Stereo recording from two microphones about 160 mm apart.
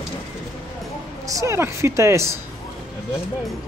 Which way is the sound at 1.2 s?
20° right (ahead or behind).